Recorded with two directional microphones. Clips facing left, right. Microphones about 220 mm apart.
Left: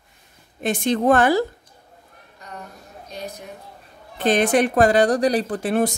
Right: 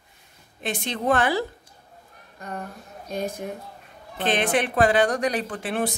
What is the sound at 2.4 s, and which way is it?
Speech, 50° right (ahead or behind).